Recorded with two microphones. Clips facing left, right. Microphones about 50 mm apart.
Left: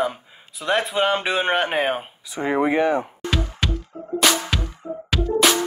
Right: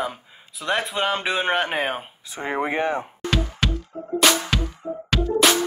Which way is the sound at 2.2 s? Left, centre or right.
Right.